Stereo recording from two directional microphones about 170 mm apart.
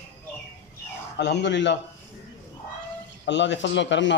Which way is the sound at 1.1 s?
90° left.